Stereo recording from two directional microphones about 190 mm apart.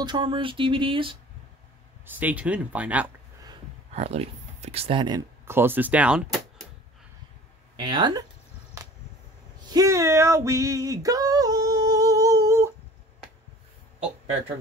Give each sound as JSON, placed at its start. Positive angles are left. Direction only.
{"t": 0.0, "sound": "speech", "side_deg": -25}
{"t": 2.0, "sound": "speech", "side_deg": -10}
{"t": 3.9, "sound": "speech", "side_deg": -35}
{"t": 5.5, "sound": "speech", "side_deg": -10}
{"t": 7.7, "sound": "speech", "side_deg": -25}
{"t": 9.7, "sound": "female singing", "side_deg": -15}